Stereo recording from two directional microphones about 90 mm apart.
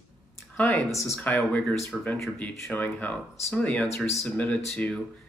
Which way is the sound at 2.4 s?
15° left (ahead or behind).